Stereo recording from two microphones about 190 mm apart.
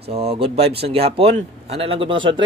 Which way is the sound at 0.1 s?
30° right (ahead or behind).